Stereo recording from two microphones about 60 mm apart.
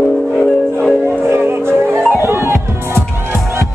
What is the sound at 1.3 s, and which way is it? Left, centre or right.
Music, right.